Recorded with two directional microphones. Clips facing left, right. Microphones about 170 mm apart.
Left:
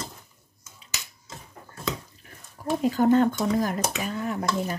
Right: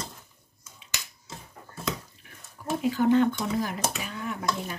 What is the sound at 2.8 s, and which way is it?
Speech, 40° left (ahead or behind).